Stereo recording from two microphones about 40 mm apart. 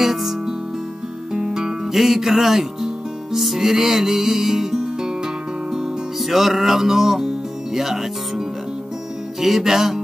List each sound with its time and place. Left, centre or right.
0.0 s music: centre
6.2 s speech: centre
9.4 s music: centre